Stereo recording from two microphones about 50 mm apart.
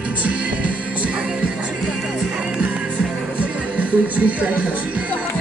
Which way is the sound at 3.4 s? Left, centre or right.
Right.